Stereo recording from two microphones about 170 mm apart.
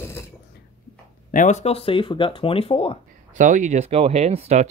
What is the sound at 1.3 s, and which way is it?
Speech, 45° left (ahead or behind).